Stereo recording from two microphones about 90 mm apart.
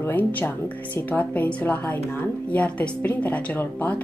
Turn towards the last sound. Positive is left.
turn(degrees=20)  # may be behind; listen again after turning